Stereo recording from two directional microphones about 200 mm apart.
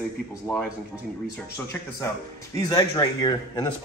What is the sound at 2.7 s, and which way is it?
Speech, 20° left (ahead or behind).